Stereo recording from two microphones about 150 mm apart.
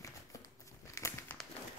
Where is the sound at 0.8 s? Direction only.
20° left (ahead or behind).